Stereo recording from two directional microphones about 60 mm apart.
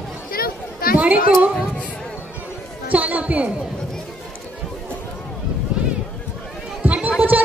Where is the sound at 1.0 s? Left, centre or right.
Right.